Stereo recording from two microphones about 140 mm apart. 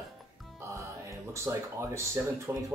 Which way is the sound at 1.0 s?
20° right (ahead or behind).